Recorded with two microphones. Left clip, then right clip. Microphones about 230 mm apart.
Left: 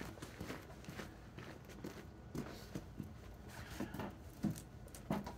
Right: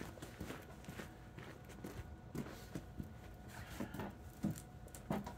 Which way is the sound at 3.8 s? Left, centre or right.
Centre.